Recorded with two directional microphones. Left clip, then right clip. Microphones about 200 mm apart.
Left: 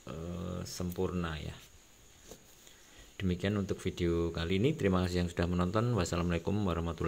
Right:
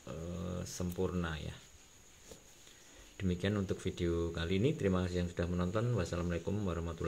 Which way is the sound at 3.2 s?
10° left (ahead or behind).